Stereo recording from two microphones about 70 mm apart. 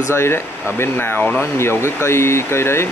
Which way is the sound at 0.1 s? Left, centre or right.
Left.